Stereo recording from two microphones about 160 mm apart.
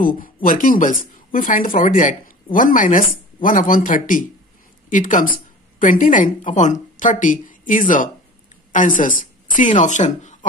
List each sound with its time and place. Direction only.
0.0 s a woman's voice: 60° left (ahead or behind)